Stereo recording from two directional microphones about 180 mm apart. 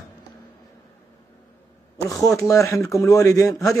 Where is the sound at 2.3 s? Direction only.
15° left (ahead or behind).